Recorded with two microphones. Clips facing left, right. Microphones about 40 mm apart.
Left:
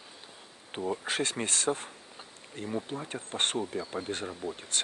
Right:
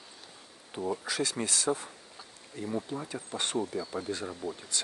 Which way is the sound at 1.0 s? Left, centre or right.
Left.